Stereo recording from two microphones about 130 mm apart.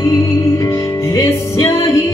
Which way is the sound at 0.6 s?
25° left (ahead or behind).